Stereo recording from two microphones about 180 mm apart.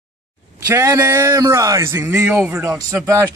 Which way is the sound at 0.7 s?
15° right (ahead or behind).